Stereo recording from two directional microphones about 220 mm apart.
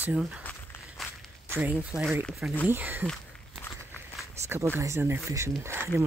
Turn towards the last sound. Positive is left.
turn(degrees=-10)  # may be behind; listen again after turning